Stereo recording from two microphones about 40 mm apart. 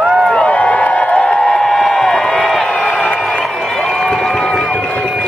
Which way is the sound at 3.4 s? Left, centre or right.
Centre.